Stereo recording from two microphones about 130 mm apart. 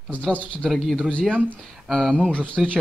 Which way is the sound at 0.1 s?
10° left (ahead or behind).